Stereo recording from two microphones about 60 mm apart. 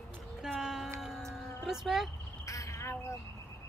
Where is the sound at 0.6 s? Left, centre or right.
Centre.